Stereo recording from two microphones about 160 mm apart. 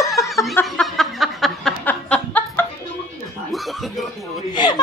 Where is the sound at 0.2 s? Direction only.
20° left (ahead or behind).